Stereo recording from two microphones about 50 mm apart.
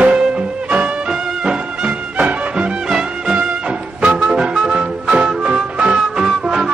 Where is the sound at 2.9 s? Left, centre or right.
Centre.